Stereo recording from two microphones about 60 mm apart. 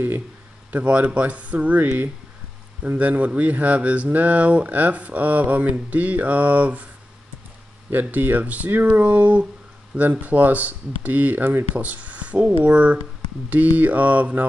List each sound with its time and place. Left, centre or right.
0.7 s speech: right
7.9 s speech: right